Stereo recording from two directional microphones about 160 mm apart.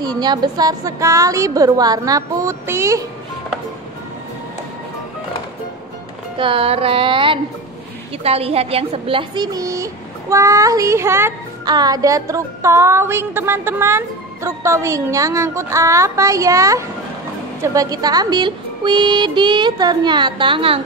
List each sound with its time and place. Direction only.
0.0 s a woman's voice: 25° right (ahead or behind)
6.3 s a woman's voice: 35° right (ahead or behind)
10.3 s music: 20° right (ahead or behind)
11.7 s a woman's voice: 25° right (ahead or behind)